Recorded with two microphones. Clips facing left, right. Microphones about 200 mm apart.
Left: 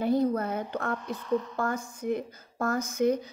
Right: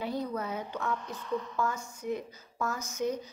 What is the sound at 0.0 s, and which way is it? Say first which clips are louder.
A woman's voice: left 8 dB; 50° left (ahead or behind).